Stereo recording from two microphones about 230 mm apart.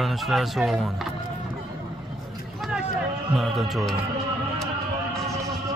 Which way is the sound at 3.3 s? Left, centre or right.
Centre.